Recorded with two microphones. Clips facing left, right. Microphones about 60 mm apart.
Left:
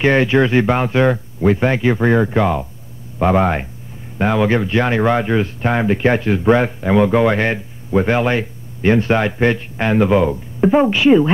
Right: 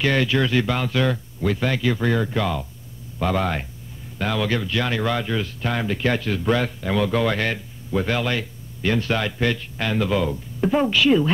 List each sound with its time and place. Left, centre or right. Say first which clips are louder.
0.0 s speech: left 7 dB; left